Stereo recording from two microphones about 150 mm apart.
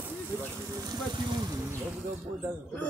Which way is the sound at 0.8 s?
25° right (ahead or behind).